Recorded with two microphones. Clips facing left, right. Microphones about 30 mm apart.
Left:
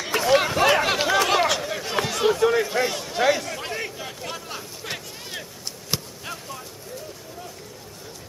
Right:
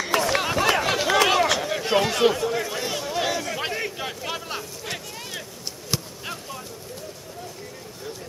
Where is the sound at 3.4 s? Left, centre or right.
Right.